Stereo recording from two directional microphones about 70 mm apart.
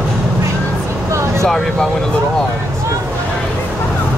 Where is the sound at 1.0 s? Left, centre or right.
Right.